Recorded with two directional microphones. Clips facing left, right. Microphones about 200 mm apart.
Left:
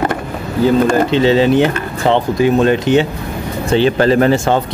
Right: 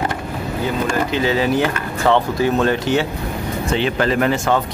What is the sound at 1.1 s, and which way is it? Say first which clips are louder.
Speech: left 6 dB; 25° left (ahead or behind).